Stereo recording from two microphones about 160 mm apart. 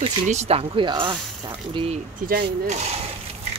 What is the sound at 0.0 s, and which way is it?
Speech, 40° right (ahead or behind).